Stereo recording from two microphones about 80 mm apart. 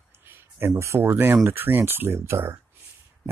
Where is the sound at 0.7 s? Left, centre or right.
Right.